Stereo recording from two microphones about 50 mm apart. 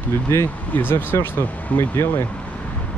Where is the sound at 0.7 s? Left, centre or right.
Left.